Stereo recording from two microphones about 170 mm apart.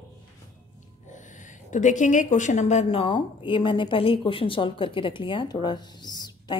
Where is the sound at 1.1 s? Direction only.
45° left (ahead or behind).